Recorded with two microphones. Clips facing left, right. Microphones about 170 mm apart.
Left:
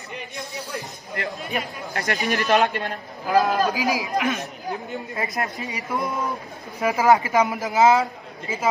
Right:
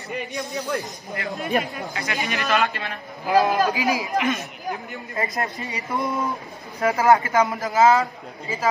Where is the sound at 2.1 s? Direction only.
40° left (ahead or behind).